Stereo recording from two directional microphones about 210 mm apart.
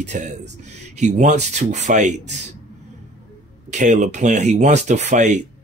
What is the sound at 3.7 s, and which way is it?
Speech, 35° right (ahead or behind).